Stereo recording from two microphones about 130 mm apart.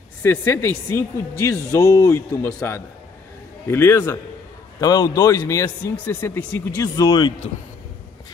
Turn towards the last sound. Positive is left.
turn(degrees=30)  # may be behind; listen again after turning